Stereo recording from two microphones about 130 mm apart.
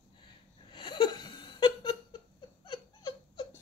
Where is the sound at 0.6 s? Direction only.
35° left (ahead or behind).